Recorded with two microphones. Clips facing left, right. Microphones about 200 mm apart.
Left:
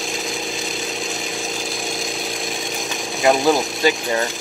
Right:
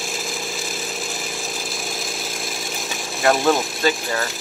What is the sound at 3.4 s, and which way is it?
Speech, 15° left (ahead or behind).